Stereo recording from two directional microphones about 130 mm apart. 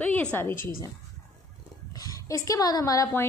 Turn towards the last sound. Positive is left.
turn(degrees=25)  # may be behind; listen again after turning